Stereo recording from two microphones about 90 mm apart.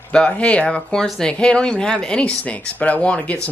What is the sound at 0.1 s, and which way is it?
Speech, 10° left (ahead or behind).